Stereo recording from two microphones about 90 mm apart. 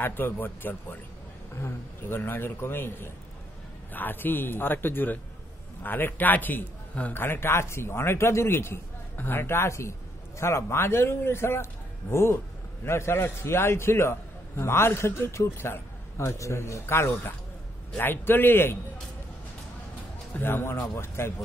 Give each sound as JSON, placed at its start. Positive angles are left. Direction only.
{"t": 0.0, "sound": "a man's voice", "side_deg": 20}
{"t": 20.3, "sound": "a man's voice", "side_deg": 25}